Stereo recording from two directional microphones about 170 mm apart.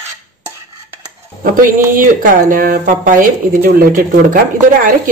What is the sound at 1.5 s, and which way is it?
Speech, 55° right (ahead or behind).